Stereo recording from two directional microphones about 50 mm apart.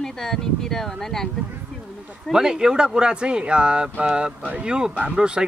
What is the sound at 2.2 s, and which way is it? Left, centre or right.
Speech, centre.